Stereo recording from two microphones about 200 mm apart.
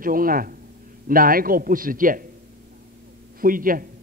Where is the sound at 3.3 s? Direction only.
45° right (ahead or behind).